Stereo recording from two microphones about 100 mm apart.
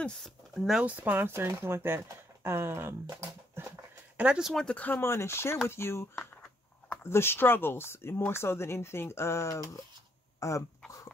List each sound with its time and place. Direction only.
0.0 s speech: centre (ahead or behind)
0.8 s speech: 15° right (ahead or behind)
4.2 s speech: 5° right (ahead or behind)
4.6 s speech: 15° left (ahead or behind); by 10.6 s 30° left (ahead or behind)